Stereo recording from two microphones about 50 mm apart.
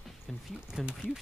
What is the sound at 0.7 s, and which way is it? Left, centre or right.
Speech, centre.